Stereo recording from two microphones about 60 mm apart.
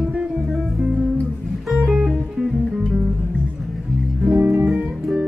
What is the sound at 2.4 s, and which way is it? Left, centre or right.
Guitar, centre.